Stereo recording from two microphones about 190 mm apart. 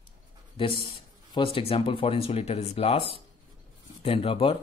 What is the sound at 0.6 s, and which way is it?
Speech, 25° left (ahead or behind).